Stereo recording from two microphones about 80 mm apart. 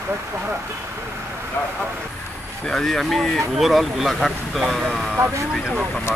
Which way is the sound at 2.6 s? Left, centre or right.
Centre.